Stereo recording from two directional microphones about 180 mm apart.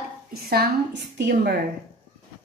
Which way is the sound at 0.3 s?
60° right (ahead or behind).